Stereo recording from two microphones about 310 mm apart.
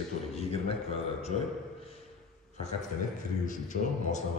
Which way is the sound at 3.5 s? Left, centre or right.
Left.